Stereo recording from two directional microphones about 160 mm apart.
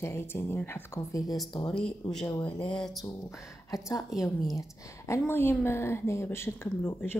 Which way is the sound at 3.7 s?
20° left (ahead or behind).